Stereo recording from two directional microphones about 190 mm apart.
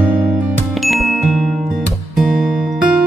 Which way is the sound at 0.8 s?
Centre (ahead or behind).